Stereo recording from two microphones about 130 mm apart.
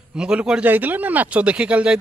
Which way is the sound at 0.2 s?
5° right (ahead or behind).